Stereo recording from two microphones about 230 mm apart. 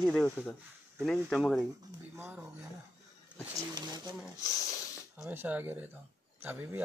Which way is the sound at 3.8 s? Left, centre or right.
Centre.